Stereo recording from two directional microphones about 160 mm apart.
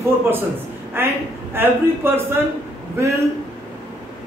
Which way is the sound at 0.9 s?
15° right (ahead or behind).